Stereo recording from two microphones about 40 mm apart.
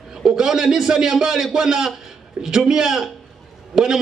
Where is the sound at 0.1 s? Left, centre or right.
Centre.